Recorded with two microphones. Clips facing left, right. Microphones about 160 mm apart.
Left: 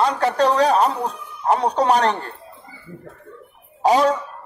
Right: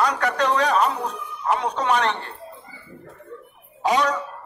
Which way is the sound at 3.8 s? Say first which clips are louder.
Left 5 dB; 35° left (ahead or behind).